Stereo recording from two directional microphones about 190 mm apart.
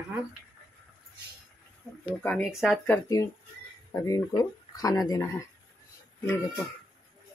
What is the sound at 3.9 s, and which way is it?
Speech, 20° left (ahead or behind).